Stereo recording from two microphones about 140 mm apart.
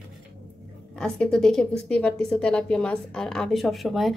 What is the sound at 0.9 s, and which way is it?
A woman's voice, 5° left (ahead or behind).